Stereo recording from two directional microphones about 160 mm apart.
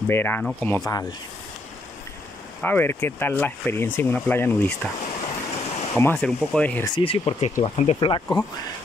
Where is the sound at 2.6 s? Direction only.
10° left (ahead or behind).